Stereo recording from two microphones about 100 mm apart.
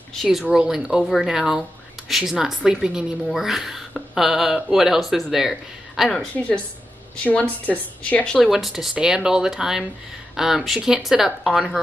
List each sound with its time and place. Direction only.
0.1 s speech: centre (ahead or behind)
6.3 s speech: 10° left (ahead or behind)